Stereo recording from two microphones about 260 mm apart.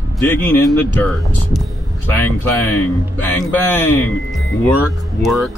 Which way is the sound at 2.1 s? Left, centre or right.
Centre.